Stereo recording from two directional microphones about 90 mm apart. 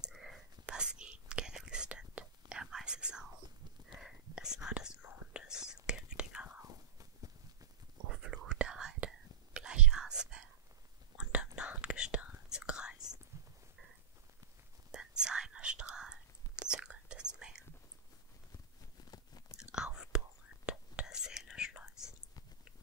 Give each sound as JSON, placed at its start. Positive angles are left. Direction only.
{"t": 0.0, "sound": "whispering", "side_deg": 0}
{"t": 6.6, "sound": "whispering", "side_deg": -40}
{"t": 8.1, "sound": "whispering", "side_deg": -10}
{"t": 13.3, "sound": "a sound", "side_deg": -30}
{"t": 14.9, "sound": "whispering", "side_deg": -10}
{"t": 19.0, "sound": "biting", "side_deg": 45}
{"t": 19.5, "sound": "chewing", "side_deg": -10}
{"t": 20.6, "sound": "whispering", "side_deg": -10}